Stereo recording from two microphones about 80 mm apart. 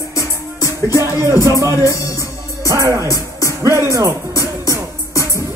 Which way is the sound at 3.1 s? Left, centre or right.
Right.